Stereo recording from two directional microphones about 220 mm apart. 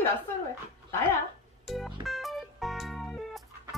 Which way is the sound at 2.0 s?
Centre (ahead or behind).